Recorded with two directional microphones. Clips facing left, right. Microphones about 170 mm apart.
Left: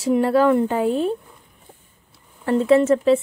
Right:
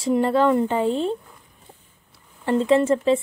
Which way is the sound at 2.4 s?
5° left (ahead or behind).